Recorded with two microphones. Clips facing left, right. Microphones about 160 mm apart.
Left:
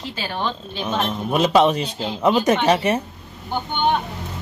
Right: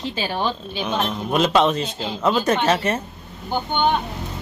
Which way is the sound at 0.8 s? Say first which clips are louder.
Left 1 dB; centre (ahead or behind).